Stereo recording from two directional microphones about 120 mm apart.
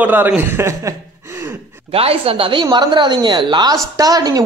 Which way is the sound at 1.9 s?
55° right (ahead or behind).